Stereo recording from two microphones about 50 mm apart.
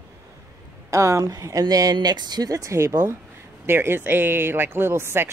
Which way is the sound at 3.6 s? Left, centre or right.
Right.